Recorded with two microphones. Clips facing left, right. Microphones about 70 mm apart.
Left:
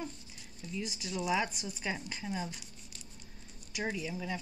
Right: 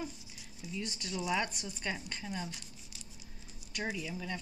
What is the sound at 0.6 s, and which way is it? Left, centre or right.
Speech, centre.